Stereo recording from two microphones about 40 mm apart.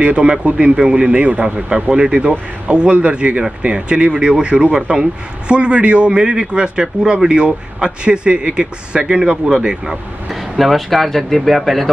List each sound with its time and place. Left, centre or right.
0.0 s speech: right
10.5 s speech: centre